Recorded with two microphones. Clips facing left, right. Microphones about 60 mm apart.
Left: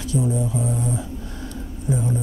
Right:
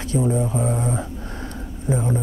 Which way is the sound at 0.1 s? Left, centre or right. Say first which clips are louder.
Right 2 dB; right.